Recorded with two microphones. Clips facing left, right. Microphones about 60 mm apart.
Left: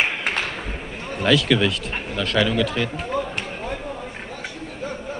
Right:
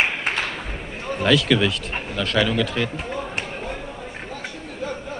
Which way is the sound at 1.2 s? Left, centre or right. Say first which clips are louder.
Even; centre.